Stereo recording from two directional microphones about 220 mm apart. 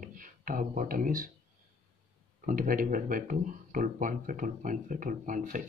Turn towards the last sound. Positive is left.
turn(degrees=-40)  # may be behind; listen again after turning